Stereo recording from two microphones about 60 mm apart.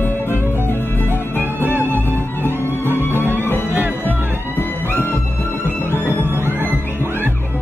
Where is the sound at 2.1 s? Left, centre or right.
Left.